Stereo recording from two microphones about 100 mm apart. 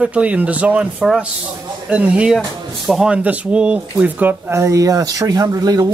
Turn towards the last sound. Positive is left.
turn(degrees=-35)  # may be behind; listen again after turning